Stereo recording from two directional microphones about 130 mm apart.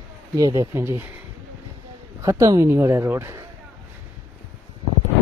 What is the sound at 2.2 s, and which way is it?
Speech, 25° right (ahead or behind).